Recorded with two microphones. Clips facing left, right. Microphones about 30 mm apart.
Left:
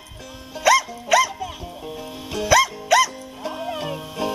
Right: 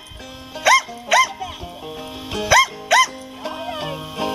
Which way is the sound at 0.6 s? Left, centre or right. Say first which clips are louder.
Right 2 dB; centre.